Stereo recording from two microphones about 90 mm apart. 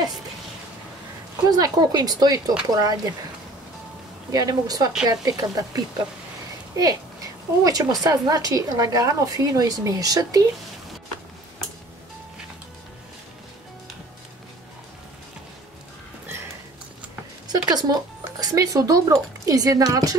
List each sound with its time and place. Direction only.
1.5 s a woman's voice: 50° right (ahead or behind)
4.3 s a woman's voice: 45° right (ahead or behind)
6.7 s a sound: 40° right (ahead or behind)
8.0 s a woman's voice: 45° right (ahead or behind)
17.5 s a sound: 50° right (ahead or behind)
18.4 s speech: 40° right (ahead or behind)